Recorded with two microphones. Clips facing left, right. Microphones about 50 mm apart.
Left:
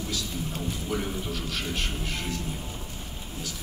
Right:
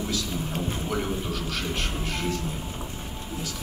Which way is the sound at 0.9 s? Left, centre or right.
Centre.